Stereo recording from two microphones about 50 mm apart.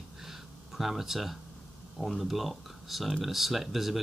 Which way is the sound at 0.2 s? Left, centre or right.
Centre.